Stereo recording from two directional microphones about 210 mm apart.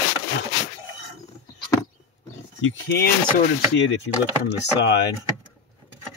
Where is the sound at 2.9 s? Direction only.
50° left (ahead or behind).